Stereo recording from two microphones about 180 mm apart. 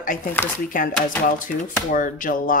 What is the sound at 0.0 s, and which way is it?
Speech, 50° left (ahead or behind).